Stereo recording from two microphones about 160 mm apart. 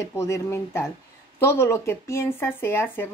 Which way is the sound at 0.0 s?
15° left (ahead or behind).